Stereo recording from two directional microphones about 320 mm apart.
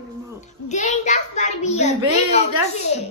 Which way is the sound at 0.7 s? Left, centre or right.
Left.